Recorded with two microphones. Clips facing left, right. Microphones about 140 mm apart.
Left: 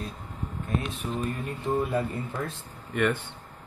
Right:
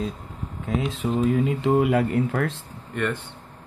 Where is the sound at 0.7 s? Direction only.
90° right.